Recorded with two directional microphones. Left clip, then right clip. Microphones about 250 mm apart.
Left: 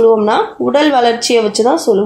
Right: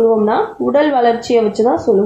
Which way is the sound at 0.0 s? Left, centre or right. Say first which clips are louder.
Left 3 dB; left.